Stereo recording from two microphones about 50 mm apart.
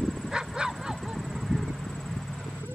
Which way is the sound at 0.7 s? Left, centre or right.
Centre.